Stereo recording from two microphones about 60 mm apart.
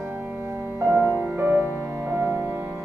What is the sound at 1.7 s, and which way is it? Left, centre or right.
Music, right.